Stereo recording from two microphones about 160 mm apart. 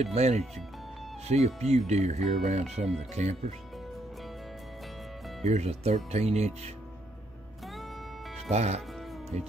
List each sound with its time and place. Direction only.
0.0 s speech: 45° right (ahead or behind)
5.4 s speech: 45° right (ahead or behind)
8.5 s speech: 45° right (ahead or behind)